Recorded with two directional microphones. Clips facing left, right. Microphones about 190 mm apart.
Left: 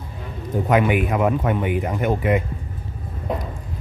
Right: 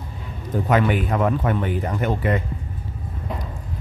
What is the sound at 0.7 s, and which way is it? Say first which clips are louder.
Speech: left 2 dB; 10° left (ahead or behind).